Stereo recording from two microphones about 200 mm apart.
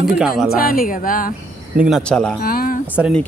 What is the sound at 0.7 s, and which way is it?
Speech, 45° left (ahead or behind).